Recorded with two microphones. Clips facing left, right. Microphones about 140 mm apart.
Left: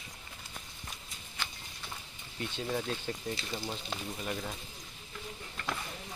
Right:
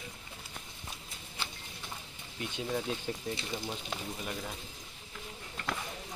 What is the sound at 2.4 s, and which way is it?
Speech, 5° right (ahead or behind).